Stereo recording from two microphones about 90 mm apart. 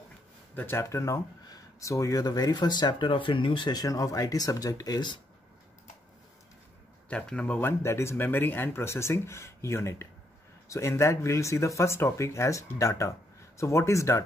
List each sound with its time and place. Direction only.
0.6 s speech: 25° left (ahead or behind); by 5.2 s 55° left (ahead or behind)
7.1 s speech: 10° left (ahead or behind)
7.6 s speech: 30° left (ahead or behind)